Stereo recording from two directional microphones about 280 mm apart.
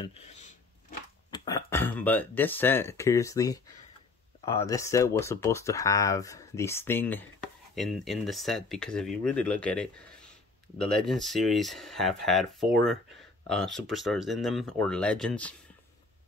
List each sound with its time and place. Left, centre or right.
0.0 s speech: left
1.3 s speech: centre
13.7 s speech: centre